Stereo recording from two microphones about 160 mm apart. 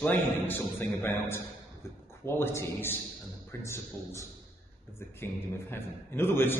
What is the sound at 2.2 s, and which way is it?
A man's voice, 15° left (ahead or behind).